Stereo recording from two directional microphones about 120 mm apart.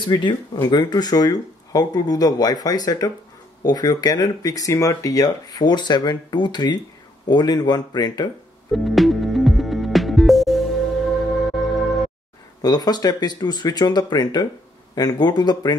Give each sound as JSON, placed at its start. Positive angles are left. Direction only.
{"t": 0.1, "sound": "speech", "side_deg": 35}
{"t": 8.7, "sound": "music", "side_deg": 0}
{"t": 12.6, "sound": "speech", "side_deg": 35}